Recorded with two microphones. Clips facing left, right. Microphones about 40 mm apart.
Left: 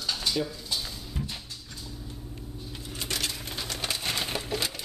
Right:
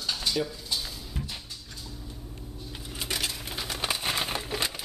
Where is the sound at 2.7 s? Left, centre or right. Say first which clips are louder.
Right 1 dB; centre.